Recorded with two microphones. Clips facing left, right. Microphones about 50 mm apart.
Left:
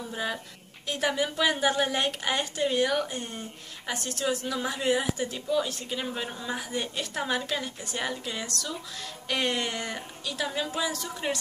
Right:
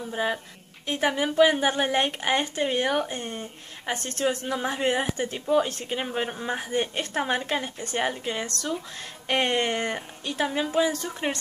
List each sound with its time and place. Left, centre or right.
0.1 s speech: right